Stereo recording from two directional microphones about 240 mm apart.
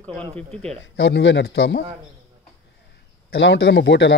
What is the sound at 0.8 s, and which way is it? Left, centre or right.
Speech, left.